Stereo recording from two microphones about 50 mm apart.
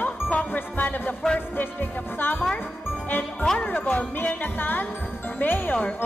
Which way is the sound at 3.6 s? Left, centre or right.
Left.